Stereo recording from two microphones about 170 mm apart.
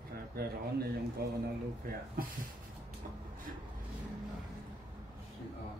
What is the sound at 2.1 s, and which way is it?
Speech, 55° right (ahead or behind).